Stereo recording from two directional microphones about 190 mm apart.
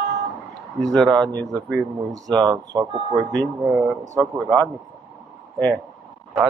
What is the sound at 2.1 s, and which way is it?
Speech, 20° right (ahead or behind).